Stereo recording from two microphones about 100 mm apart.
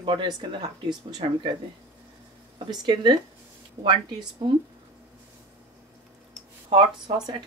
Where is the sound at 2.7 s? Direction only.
50° right (ahead or behind).